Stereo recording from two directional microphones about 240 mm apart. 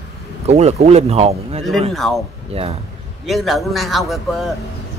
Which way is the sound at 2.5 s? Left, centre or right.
Right.